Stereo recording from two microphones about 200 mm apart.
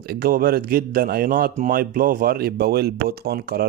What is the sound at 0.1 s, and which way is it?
Speech, 50° right (ahead or behind).